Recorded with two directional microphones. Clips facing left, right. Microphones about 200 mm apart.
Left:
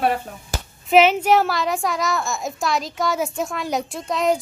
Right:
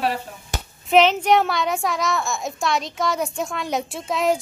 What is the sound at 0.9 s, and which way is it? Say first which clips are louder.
A child's voice: left 1 dB; 5° left (ahead or behind).